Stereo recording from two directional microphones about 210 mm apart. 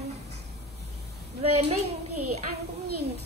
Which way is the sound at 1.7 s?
90° right.